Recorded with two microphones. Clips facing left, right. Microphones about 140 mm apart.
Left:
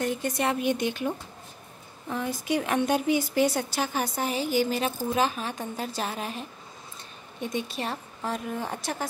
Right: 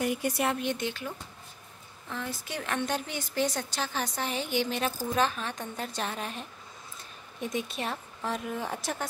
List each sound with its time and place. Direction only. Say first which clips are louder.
0.0 s speech: left 1 dB; 10° right (ahead or behind)
0.6 s a woman's voice: left 5 dB; 10° left (ahead or behind)